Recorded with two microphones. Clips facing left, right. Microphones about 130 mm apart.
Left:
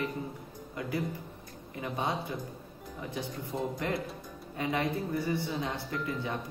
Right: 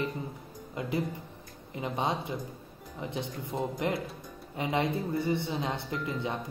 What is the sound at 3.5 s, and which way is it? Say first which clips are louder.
Speech: right 2 dB; 20° right (ahead or behind).